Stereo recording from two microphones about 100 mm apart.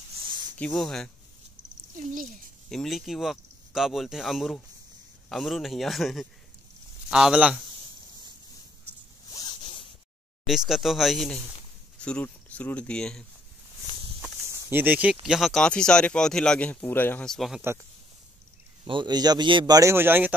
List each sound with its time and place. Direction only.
0.2 s a sound: 50° right (ahead or behind)
0.7 s speech: 5° left (ahead or behind)
2.7 s speech: centre (ahead or behind)
9.5 s zipper: 55° left (ahead or behind)
10.4 s speech: 5° right (ahead or behind)
12.0 s speech: 15° left (ahead or behind)
14.5 s speech: 20° right (ahead or behind)
15.2 s speech: 5° right (ahead or behind); by 17.2 s 20° left (ahead or behind)
17.2 s speech: 5° left (ahead or behind)
18.9 s a man's voice: 50° right (ahead or behind)
19.7 s speech: 30° right (ahead or behind)